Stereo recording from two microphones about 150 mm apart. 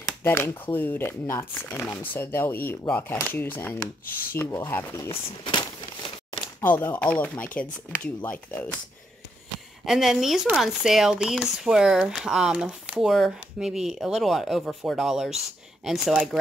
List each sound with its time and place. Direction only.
0.2 s speech: 15° left (ahead or behind); by 5.7 s 30° left (ahead or behind)
6.6 s speech: 10° left (ahead or behind)
9.8 s speech: centre (ahead or behind)